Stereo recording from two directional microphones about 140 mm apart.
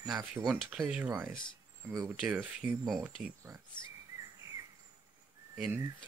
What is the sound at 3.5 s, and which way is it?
Speech, 20° right (ahead or behind).